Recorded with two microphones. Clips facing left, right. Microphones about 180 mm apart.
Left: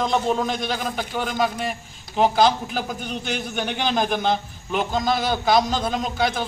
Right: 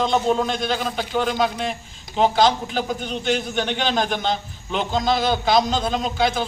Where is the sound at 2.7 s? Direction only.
10° left (ahead or behind).